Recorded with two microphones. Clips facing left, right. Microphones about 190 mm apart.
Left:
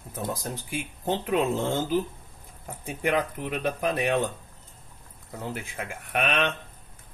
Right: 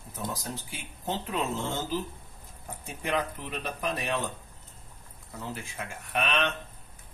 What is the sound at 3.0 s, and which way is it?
Speech, 60° left (ahead or behind).